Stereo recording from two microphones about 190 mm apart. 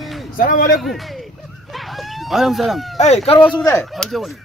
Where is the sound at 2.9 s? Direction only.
35° left (ahead or behind).